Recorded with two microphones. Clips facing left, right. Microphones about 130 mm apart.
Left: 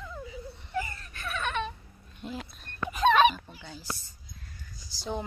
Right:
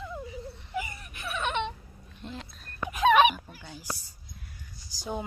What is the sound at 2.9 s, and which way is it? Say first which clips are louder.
Fowl: right 1 dB; 10° right (ahead or behind).